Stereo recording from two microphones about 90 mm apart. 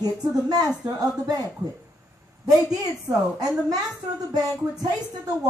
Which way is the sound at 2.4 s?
45° right (ahead or behind).